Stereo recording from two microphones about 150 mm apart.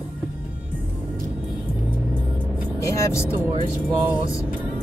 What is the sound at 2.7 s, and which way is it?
Speech, 20° left (ahead or behind).